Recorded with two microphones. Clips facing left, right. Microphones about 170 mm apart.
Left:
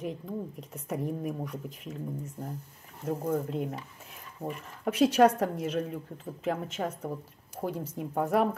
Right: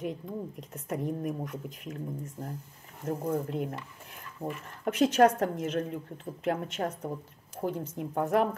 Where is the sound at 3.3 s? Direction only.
5° right (ahead or behind).